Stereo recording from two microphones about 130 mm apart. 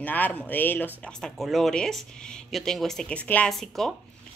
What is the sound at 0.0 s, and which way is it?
Speech, 15° left (ahead or behind).